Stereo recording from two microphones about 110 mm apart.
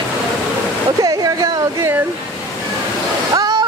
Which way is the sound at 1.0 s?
35° right (ahead or behind).